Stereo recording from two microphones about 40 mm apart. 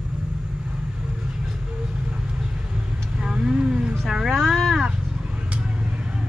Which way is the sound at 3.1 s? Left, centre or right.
Centre.